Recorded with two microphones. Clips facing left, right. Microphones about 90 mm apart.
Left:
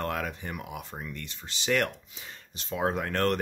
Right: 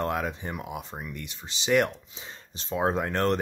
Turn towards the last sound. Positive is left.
turn(degrees=-20)  # may be behind; listen again after turning